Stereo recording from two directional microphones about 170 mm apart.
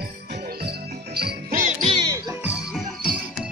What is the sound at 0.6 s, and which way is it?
Jingle bell, 70° right (ahead or behind).